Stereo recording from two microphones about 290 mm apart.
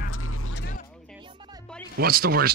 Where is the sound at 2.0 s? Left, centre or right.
Right.